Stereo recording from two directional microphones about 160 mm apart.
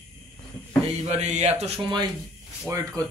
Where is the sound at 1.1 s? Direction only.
45° right (ahead or behind).